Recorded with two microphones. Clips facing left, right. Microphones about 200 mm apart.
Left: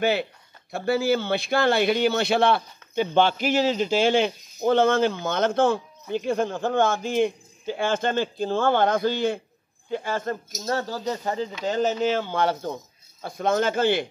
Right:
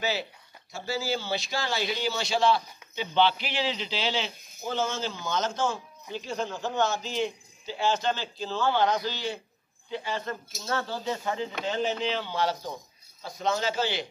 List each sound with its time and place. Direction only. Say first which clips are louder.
0.0 s speech: left 7 dB; 55° left (ahead or behind)